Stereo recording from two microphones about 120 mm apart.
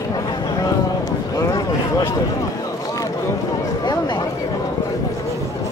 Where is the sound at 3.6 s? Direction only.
35° left (ahead or behind).